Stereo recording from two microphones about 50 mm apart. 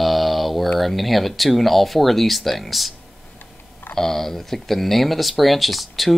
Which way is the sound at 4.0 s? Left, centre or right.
Centre.